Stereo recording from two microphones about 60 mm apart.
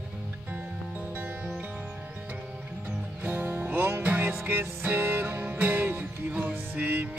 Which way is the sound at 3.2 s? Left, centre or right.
Right.